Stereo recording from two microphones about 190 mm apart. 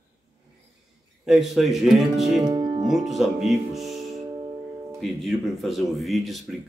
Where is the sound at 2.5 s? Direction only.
20° right (ahead or behind).